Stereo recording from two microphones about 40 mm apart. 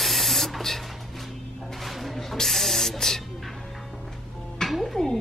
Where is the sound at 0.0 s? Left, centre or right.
Centre.